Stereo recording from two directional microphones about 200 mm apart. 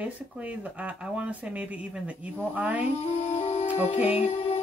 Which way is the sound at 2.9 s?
30° left (ahead or behind).